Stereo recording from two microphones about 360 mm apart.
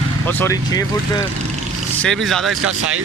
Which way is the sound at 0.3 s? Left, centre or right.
Centre.